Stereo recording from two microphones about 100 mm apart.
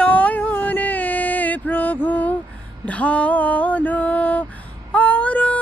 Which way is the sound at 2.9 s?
15° left (ahead or behind).